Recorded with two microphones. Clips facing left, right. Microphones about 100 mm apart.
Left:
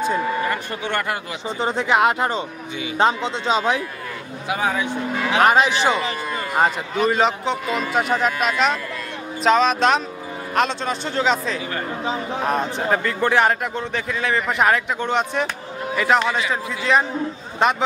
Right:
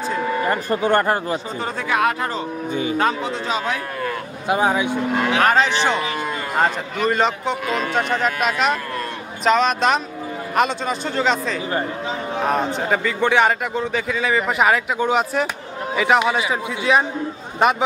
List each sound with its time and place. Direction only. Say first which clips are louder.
0.4 s speech: right 4 dB; 35° right (ahead or behind)
1.6 s speech: left 4 dB; 25° left (ahead or behind)
2.7 s speech: right 8 dB; 40° right (ahead or behind)
3.0 s speech: left 1 dB; 25° left (ahead or behind)
4.5 s speech: right 4 dB; 30° right (ahead or behind)
5.4 s a man's voice: left 3 dB; 10° left (ahead or behind)